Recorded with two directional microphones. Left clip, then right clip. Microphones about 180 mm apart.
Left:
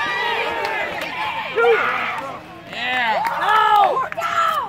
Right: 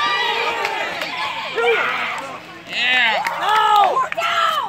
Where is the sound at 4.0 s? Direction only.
50° right (ahead or behind).